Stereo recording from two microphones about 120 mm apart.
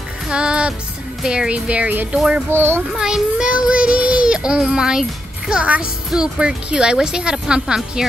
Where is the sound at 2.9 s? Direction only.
5° right (ahead or behind).